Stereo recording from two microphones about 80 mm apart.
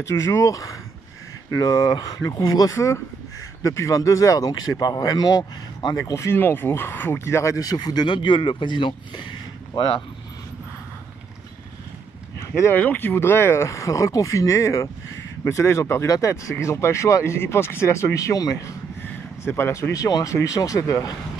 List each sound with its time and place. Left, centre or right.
0.0 s speech: left
2.7 s speech: left
5.9 s speech: left
6.3 s speech: left
12.7 s speech: left
19.4 s speech: left